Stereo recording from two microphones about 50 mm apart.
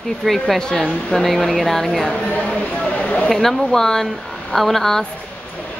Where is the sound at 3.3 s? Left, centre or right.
Centre.